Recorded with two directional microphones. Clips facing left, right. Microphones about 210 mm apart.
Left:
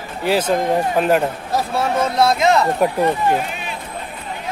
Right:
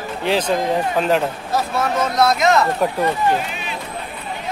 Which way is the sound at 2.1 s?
30° left (ahead or behind).